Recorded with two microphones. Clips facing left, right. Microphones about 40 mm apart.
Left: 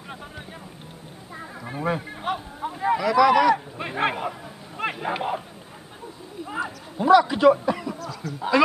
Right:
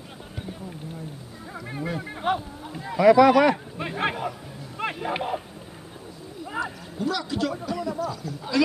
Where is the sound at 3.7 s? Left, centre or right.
Centre.